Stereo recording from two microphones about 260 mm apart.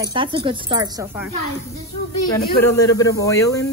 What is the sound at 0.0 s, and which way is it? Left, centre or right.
Speech, centre.